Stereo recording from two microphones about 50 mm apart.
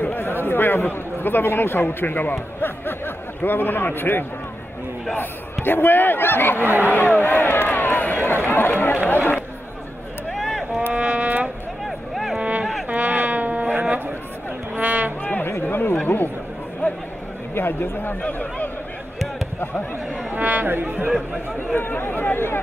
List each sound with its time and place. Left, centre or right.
0.0 s a man's voice: left
10.3 s a sound: centre
10.9 s music: right
11.8 s vehicle: centre
12.4 s a sound: right
12.8 s dog: right
14.8 s music: right
15.6 s chatter: left
17.6 s a man's voice: left
18.2 s speech: left
20.3 s speech: right
21.7 s speech: left